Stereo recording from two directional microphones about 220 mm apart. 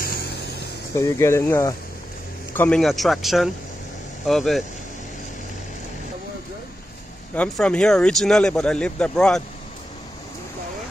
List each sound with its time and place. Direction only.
0.0 s vehicle: 45° left (ahead or behind)
0.9 s speech: 10° left (ahead or behind)
7.3 s speech: 5° left (ahead or behind)